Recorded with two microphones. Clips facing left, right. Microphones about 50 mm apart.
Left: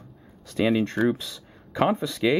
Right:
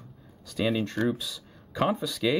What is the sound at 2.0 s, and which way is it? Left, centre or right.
Speech, left.